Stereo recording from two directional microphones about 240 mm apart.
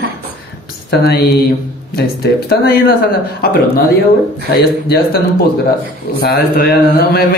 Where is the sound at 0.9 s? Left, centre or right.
Left.